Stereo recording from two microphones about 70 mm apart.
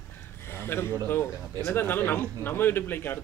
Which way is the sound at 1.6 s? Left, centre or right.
Left.